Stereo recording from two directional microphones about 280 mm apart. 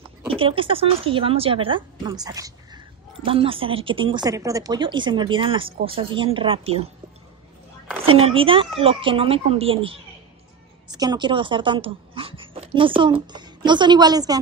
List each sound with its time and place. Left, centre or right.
0.3 s speech: centre
8.0 s speech: centre